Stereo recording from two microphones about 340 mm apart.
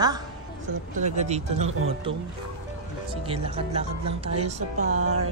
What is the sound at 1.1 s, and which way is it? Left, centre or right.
Speech, centre.